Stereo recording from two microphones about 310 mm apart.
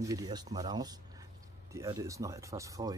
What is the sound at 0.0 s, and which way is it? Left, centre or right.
Speech, centre.